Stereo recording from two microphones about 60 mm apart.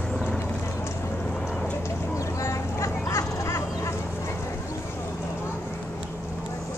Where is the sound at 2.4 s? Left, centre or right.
Left.